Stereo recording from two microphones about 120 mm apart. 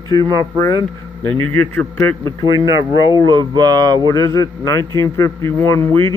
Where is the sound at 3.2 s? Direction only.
40° right (ahead or behind).